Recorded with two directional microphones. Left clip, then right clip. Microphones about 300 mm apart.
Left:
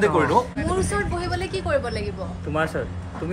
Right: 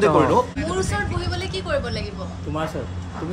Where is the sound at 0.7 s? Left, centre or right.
Left.